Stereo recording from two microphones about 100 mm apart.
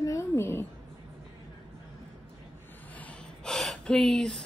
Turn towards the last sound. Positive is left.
turn(degrees=5)  # may be behind; listen again after turning